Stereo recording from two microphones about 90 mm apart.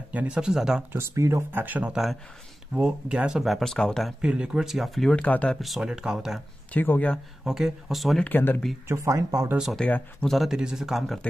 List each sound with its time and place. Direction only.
0.1 s speech: 15° right (ahead or behind)
0.9 s speech: 30° right (ahead or behind)
1.5 s speech: 20° right (ahead or behind)
1.9 s speech: 5° right (ahead or behind)
4.2 s speech: 10° right (ahead or behind)
5.1 s speech: 15° left (ahead or behind)
5.6 s speech: 5° right (ahead or behind)
6.7 s speech: 20° left (ahead or behind)
7.4 s speech: 5° right (ahead or behind)
8.2 s speech: 20° left (ahead or behind)
8.8 s speech: 35° right (ahead or behind)
9.8 s speech: 15° left (ahead or behind)
10.2 s speech: centre (ahead or behind)